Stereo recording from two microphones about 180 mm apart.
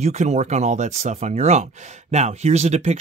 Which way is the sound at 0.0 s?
40° right (ahead or behind).